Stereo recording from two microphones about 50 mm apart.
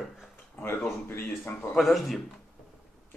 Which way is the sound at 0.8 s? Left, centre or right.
Left.